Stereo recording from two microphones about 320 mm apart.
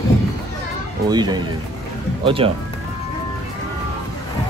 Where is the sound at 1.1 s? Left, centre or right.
Centre.